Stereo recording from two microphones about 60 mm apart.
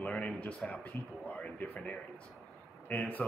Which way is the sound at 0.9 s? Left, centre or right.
Left.